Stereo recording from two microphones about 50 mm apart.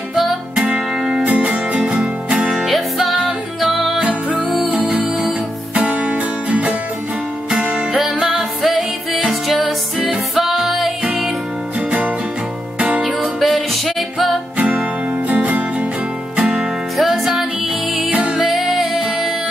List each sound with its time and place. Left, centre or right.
0.1 s music: centre
1.2 s music: right
2.4 s music: centre
4.0 s music: right
5.8 s music: right
7.9 s music: centre
12.7 s music: right
13.0 s music: centre
15.2 s music: right
16.4 s music: centre
18.1 s music: centre
18.4 s music: centre